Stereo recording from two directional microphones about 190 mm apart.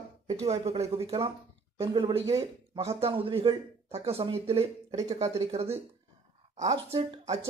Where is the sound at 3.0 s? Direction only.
30° right (ahead or behind).